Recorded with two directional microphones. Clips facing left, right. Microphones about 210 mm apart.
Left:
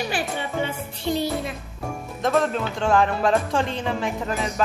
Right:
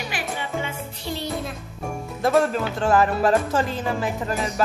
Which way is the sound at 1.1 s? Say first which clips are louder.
Left 7 dB; 20° left (ahead or behind).